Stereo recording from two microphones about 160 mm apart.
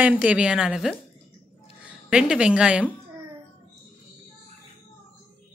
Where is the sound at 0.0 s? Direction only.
10° right (ahead or behind).